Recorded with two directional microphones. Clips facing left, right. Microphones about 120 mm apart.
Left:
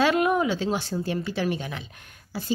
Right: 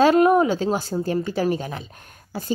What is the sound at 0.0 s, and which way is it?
A woman's voice, 40° right (ahead or behind).